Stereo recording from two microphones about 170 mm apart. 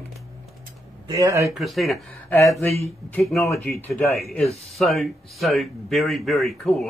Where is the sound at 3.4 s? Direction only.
15° left (ahead or behind).